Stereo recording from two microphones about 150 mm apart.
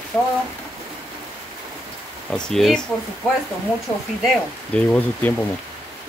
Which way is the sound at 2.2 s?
5° left (ahead or behind).